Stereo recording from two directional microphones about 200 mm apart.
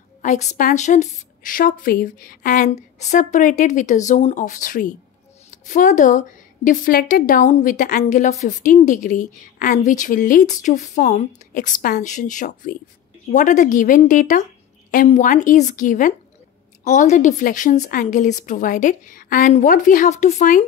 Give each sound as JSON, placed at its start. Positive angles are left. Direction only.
{"t": 0.2, "sound": "a woman's voice", "side_deg": 35}